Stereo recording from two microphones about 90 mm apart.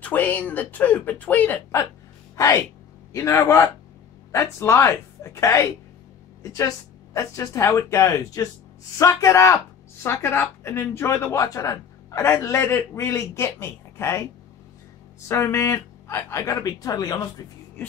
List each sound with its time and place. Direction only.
0.0 s speech: 20° left (ahead or behind)
15.2 s speech: 30° left (ahead or behind)